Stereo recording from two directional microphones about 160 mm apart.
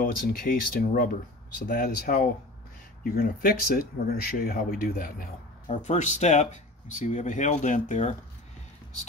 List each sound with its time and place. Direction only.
0.0 s speech: 60° left (ahead or behind)
5.7 s speech: 50° left (ahead or behind)